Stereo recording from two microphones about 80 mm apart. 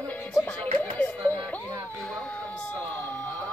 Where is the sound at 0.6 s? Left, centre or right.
Centre.